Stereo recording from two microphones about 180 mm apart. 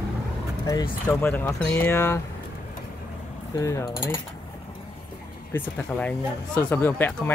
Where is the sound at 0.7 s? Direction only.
20° left (ahead or behind).